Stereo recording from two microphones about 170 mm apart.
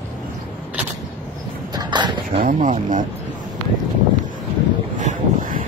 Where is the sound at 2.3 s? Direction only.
50° right (ahead or behind).